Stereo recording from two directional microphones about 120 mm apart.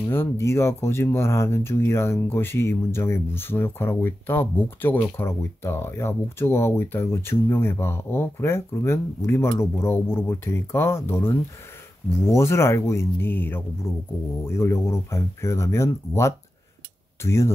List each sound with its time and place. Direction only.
0.1 s speech: 20° left (ahead or behind)